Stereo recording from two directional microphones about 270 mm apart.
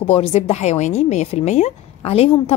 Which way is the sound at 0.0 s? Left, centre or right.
Left.